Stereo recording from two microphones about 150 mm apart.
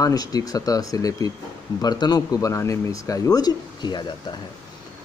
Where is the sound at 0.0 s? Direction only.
25° left (ahead or behind).